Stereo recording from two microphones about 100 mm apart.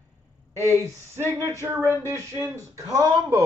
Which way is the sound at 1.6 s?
30° right (ahead or behind).